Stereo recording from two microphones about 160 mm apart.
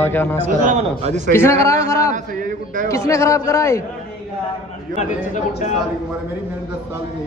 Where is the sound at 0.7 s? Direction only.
45° right (ahead or behind).